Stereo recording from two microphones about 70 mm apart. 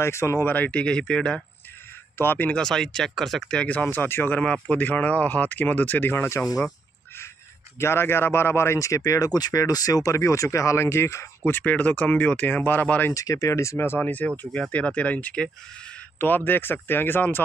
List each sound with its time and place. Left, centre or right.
0.0 s speech: left
0.5 s speech: centre
2.1 s speech: left
2.5 s speech: centre
3.9 s speech: left
7.8 s speech: left
11.4 s speech: left
13.1 s speech: left
13.9 s speech: left
16.2 s speech: left